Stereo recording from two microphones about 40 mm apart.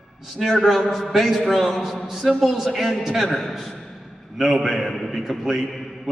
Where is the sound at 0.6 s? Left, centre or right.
Centre.